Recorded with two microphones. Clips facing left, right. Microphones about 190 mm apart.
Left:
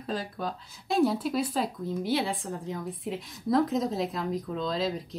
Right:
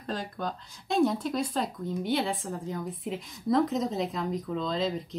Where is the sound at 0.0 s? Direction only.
5° left (ahead or behind).